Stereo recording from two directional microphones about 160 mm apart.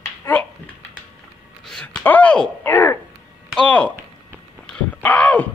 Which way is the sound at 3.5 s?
5° left (ahead or behind).